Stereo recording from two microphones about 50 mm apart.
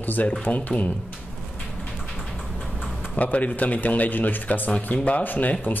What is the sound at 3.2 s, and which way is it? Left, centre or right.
Speech, left.